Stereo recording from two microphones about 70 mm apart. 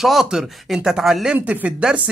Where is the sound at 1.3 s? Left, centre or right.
Right.